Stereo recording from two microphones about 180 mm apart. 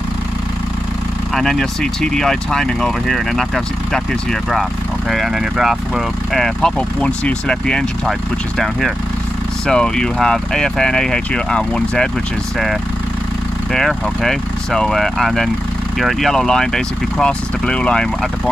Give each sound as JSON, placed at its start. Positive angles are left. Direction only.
{"t": 1.3, "sound": "speech", "side_deg": 0}
{"t": 13.7, "sound": "speech", "side_deg": 0}